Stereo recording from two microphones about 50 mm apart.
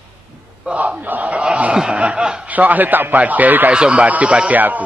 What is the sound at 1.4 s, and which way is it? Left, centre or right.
Speech, centre.